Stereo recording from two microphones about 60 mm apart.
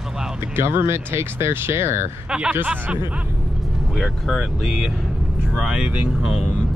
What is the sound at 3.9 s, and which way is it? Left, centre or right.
Speech, centre.